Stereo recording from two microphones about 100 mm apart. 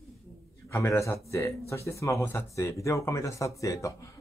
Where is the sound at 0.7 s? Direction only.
25° left (ahead or behind).